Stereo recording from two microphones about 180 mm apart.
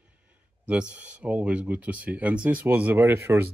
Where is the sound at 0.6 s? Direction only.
5° right (ahead or behind).